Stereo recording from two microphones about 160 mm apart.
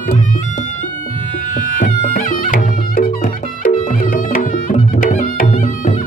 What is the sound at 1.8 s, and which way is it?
Music, 55° left (ahead or behind).